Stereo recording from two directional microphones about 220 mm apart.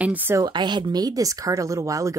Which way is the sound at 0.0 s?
10° right (ahead or behind).